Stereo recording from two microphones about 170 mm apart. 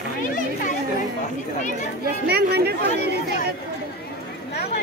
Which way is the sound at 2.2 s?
70° right (ahead or behind).